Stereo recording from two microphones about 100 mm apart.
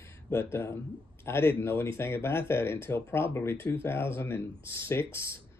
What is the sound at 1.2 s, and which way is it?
Speech, 25° left (ahead or behind).